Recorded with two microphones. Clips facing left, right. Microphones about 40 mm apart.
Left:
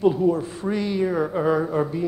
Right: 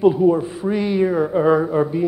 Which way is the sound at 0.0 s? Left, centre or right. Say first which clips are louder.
Right 5 dB; centre.